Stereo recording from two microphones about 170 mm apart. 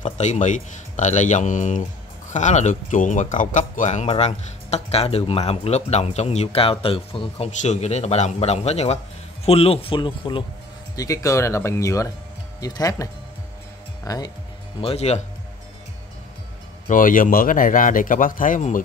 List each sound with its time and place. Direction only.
0.0 s a man's voice: 45° left (ahead or behind); by 10.4 s 30° left (ahead or behind)
11.0 s speech: 20° left (ahead or behind)
14.8 s speech: 35° left (ahead or behind)
16.8 s a man's voice: 50° left (ahead or behind)